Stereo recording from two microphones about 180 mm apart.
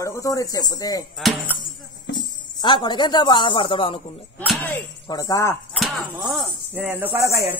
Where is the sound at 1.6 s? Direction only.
25° left (ahead or behind).